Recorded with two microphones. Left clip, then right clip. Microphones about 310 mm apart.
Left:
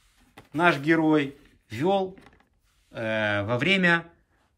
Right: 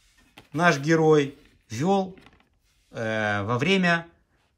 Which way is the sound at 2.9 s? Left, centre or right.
Centre.